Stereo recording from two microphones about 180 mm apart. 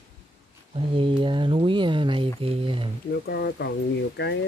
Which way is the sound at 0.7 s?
30° right (ahead or behind).